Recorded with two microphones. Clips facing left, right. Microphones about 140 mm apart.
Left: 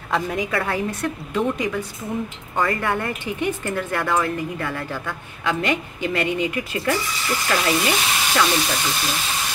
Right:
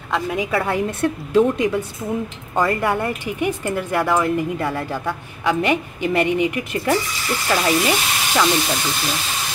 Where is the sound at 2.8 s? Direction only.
10° right (ahead or behind).